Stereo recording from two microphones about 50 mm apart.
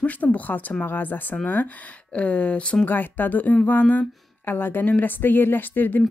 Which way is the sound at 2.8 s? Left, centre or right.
Left.